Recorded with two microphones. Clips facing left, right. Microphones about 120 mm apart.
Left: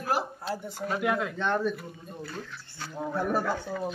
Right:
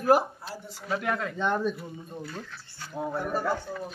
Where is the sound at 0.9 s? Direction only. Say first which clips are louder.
Left 1 dB; 5° left (ahead or behind).